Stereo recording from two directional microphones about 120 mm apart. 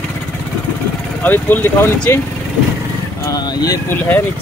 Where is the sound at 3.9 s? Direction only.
20° left (ahead or behind).